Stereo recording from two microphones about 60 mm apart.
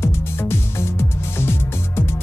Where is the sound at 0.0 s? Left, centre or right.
Left.